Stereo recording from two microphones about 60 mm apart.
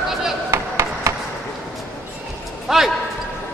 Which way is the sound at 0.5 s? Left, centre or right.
Right.